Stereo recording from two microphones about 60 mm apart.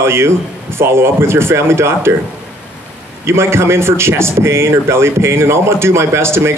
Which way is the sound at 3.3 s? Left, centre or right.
Right.